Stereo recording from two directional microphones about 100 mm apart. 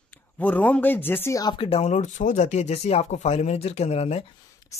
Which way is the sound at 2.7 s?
90° left.